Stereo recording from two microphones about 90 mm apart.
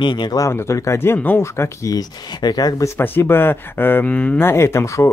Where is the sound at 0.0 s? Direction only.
60° left (ahead or behind).